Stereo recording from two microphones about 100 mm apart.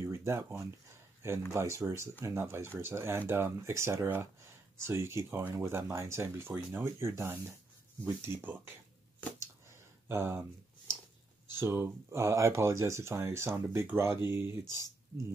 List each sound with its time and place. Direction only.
0.1 s speech: 30° right (ahead or behind)
10.0 s speech: 25° right (ahead or behind)
11.5 s speech: 25° right (ahead or behind)